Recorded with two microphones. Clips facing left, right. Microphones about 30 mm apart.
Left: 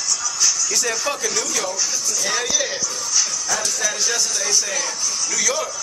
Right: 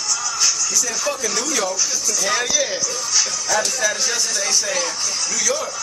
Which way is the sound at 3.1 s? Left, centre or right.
Right.